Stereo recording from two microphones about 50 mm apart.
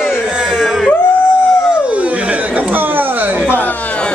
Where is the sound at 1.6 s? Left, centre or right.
Right.